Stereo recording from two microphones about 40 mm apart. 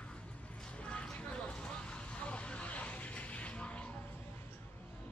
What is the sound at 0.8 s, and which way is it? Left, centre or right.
Vehicle, left.